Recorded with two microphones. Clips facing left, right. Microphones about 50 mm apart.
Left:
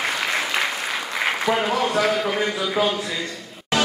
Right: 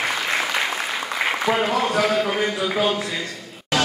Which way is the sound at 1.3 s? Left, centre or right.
Centre.